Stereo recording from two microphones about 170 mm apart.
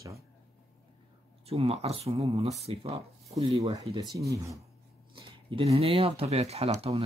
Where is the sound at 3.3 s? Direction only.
20° right (ahead or behind).